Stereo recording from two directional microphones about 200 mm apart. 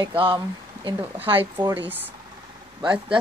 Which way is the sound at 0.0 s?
25° right (ahead or behind).